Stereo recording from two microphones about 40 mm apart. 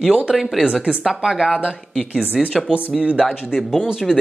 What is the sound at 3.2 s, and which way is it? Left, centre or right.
Speech, centre.